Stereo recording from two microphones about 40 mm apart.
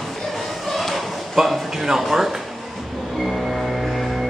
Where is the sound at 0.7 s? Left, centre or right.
Centre.